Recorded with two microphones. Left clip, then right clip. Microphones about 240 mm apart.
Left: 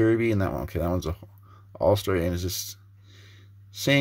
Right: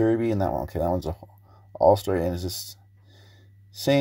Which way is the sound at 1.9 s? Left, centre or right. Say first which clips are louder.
Right 2 dB; centre.